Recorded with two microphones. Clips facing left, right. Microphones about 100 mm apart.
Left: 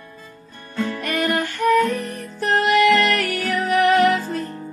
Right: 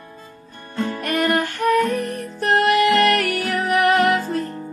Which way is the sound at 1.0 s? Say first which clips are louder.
Right 3 dB; 50° right (ahead or behind).